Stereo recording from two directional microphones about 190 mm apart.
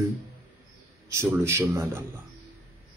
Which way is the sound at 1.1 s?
15° right (ahead or behind).